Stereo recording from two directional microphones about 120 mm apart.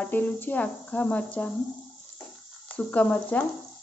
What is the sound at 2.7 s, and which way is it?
Speech, 10° left (ahead or behind).